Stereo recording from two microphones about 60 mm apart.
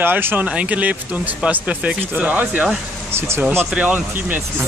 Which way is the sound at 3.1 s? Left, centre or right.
Right.